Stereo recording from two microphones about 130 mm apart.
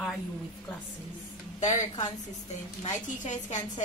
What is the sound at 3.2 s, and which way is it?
Speech, 70° left (ahead or behind).